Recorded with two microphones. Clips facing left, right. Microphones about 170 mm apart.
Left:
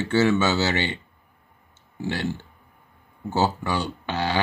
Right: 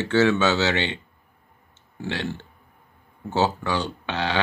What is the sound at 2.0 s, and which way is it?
Speech, 10° left (ahead or behind).